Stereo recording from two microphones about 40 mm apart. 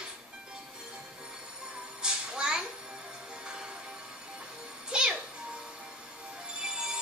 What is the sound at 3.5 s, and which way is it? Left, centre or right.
Train, right.